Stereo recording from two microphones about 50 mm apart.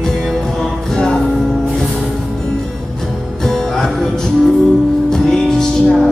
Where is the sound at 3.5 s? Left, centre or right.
Centre.